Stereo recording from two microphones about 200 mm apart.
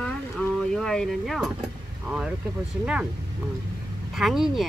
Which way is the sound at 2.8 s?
5° right (ahead or behind).